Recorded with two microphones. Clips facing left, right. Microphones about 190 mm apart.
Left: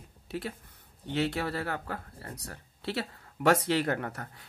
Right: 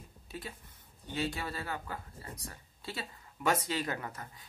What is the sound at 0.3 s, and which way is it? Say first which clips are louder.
Speech: left 8 dB; 70° left (ahead or behind).